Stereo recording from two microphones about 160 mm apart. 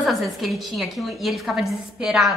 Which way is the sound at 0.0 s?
Centre (ahead or behind).